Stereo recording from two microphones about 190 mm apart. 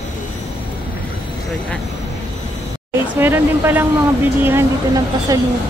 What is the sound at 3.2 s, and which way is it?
Speech, 10° right (ahead or behind).